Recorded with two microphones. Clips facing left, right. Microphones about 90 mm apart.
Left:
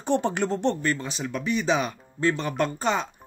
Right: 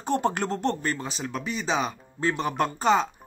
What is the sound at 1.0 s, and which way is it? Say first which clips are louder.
Speech: left 1 dB; 30° right (ahead or behind).